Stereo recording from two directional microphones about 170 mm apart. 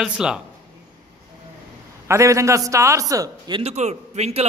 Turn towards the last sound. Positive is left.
turn(degrees=-40)  # may be behind; listen again after turning